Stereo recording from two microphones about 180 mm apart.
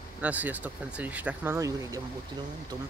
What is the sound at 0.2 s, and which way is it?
Speech, 10° right (ahead or behind).